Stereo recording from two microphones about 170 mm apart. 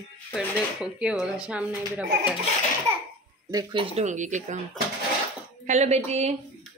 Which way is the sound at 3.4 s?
20° right (ahead or behind).